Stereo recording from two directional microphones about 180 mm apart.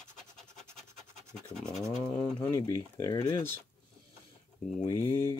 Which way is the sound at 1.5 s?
5° left (ahead or behind).